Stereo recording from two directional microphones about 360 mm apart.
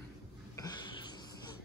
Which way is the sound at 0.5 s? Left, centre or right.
Centre.